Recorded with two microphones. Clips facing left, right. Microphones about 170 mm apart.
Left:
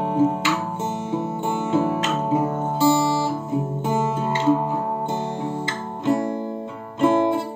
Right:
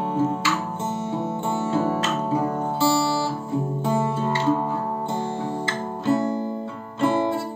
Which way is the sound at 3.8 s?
20° left (ahead or behind).